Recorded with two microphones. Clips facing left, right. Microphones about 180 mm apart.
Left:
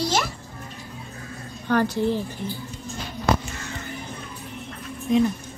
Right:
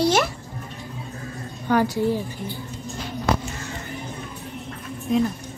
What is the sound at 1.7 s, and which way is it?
Speech, 10° right (ahead or behind).